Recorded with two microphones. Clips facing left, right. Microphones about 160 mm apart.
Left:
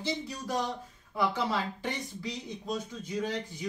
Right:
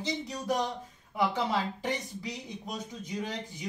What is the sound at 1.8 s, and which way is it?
Speech, 20° right (ahead or behind).